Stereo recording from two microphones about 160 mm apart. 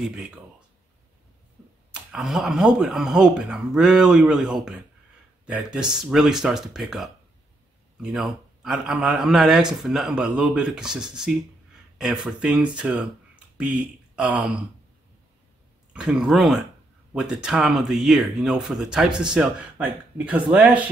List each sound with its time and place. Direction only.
0.0 s a man's voice: 5° right (ahead or behind)
2.0 s a man's voice: centre (ahead or behind)
15.9 s a man's voice: 5° right (ahead or behind)